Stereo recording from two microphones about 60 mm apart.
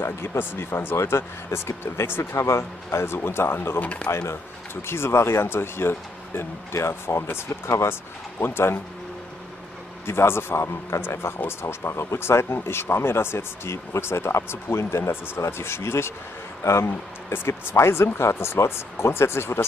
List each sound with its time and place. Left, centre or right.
0.0 s a man's voice: left
3.8 s speech: left
4.8 s a man's voice: left
10.0 s a man's voice: left